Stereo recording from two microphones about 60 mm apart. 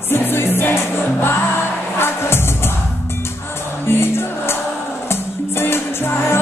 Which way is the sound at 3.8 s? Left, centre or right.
Left.